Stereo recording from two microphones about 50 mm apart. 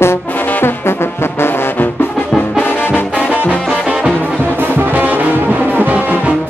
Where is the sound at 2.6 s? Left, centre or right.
Left.